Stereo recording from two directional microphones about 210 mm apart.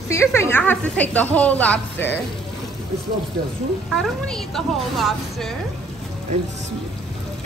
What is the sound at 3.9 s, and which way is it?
A woman's voice, centre (ahead or behind).